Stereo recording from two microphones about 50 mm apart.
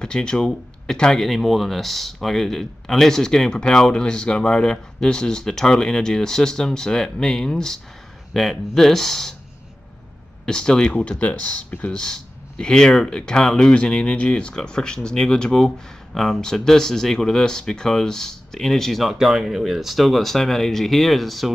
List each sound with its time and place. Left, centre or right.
0.0 s speech: centre
1.2 s speech: centre
10.4 s speech: centre
12.0 s speech: centre
19.1 s speech: centre